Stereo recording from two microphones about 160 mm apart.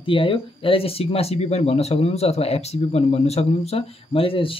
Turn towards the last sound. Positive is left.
turn(degrees=35)  # may be behind; listen again after turning